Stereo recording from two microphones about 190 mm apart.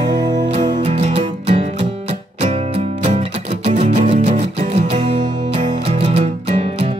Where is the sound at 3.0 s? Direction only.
35° right (ahead or behind).